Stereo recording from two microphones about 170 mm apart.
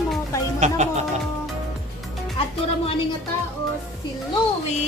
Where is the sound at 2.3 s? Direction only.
30° left (ahead or behind).